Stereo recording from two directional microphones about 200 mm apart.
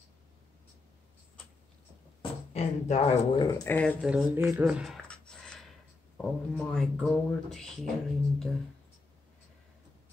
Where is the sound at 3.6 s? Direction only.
10° left (ahead or behind).